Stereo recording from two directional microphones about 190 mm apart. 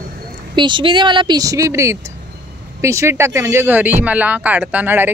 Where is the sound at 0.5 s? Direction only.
25° right (ahead or behind).